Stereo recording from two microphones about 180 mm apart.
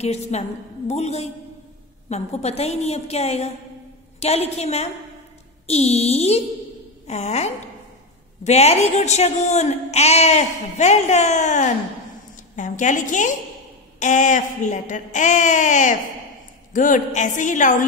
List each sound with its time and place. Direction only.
0.0 s speech: 35° left (ahead or behind)